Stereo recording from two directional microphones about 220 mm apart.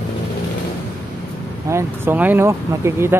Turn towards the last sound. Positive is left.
turn(degrees=-10)  # may be behind; listen again after turning